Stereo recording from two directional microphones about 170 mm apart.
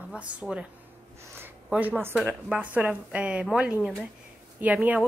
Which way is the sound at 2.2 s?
10° right (ahead or behind).